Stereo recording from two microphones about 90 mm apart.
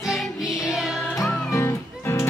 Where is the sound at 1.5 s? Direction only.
30° left (ahead or behind).